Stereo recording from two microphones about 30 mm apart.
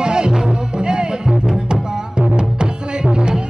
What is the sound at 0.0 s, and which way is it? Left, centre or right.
Music, right.